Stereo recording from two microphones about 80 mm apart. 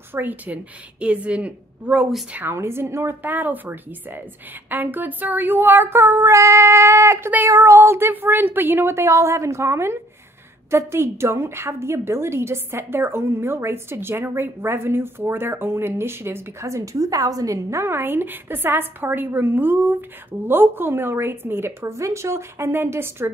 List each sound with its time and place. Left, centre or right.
0.1 s a woman's voice: right
2.3 s a woman's voice: right